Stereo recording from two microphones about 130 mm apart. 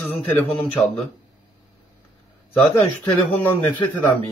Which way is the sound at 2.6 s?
10° left (ahead or behind).